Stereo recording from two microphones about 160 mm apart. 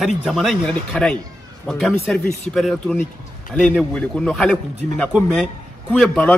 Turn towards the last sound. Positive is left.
turn(degrees=5)  # may be behind; listen again after turning